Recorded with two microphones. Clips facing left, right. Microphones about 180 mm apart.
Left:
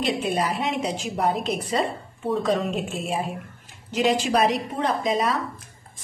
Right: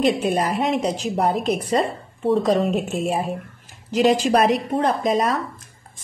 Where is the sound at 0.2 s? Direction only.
45° right (ahead or behind).